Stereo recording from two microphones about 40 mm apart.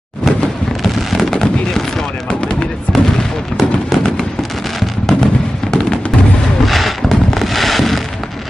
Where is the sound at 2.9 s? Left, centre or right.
Left.